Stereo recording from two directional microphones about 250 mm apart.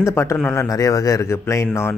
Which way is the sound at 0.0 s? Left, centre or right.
Centre.